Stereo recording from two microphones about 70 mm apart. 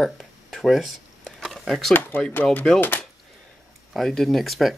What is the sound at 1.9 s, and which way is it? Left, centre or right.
Speech, left.